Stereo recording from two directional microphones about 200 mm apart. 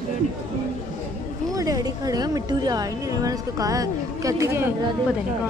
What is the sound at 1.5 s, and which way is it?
A woman's voice, 20° right (ahead or behind).